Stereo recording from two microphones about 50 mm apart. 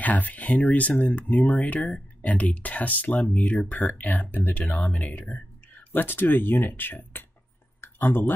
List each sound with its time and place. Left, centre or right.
0.0 s speech: left